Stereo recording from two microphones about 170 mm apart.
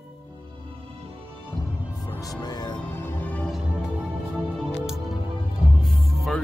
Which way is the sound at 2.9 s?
10° left (ahead or behind).